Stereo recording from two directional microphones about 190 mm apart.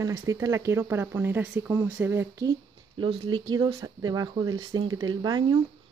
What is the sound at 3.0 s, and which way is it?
Speech, 25° right (ahead or behind).